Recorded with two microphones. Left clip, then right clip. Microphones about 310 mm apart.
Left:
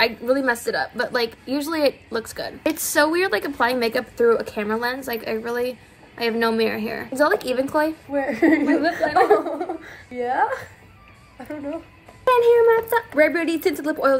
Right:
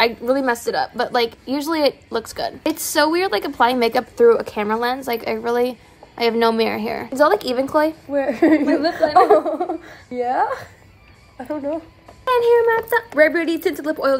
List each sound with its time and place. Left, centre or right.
0.0 s a woman's voice: centre
8.1 s speech: centre
12.3 s speech: centre